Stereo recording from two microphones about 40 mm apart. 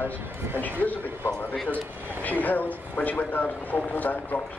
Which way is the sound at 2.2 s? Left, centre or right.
Left.